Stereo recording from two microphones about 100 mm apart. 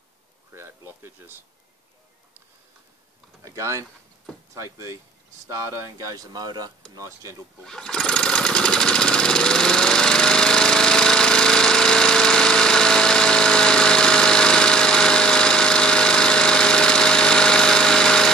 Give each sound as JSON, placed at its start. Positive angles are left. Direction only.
{"t": 0.5, "sound": "a sound", "side_deg": -25}
{"t": 3.4, "sound": "speech", "side_deg": -30}
{"t": 5.5, "sound": "speech", "side_deg": -35}
{"t": 7.6, "sound": "lawn mower", "side_deg": 5}